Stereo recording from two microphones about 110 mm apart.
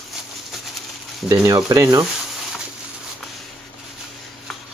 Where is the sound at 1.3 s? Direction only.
30° right (ahead or behind).